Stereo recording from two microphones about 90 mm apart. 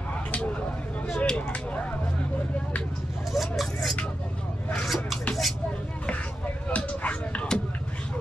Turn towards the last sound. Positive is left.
turn(degrees=15)  # may be behind; listen again after turning